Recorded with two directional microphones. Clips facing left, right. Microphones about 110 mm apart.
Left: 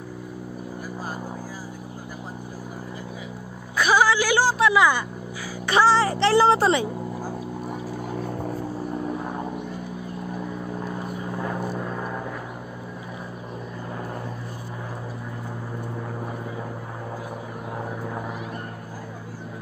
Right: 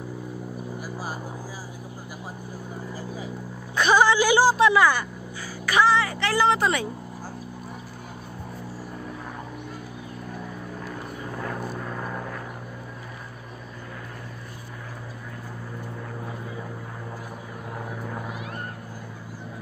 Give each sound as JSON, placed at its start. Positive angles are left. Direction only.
{"t": 3.7, "sound": "a sound", "side_deg": 5}
{"t": 4.7, "sound": "speech", "side_deg": 15}
{"t": 5.7, "sound": "a woman's voice", "side_deg": 30}
{"t": 10.8, "sound": "vehicle", "side_deg": 20}